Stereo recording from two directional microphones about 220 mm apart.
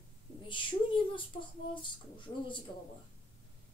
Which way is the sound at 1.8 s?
20° left (ahead or behind).